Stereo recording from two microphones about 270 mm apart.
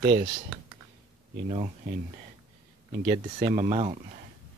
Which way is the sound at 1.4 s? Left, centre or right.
Right.